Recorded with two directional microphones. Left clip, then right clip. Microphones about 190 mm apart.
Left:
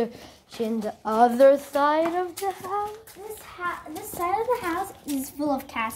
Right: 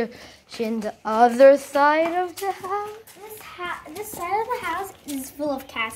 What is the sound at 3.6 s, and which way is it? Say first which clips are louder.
Hands: left 1 dB; 40° right (ahead or behind).